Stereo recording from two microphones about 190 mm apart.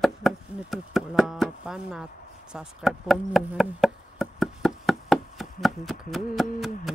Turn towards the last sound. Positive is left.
turn(degrees=0)  # may be behind; listen again after turning